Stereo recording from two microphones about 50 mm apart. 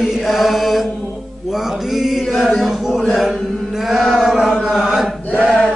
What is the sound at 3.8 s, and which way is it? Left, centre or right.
Chant, centre.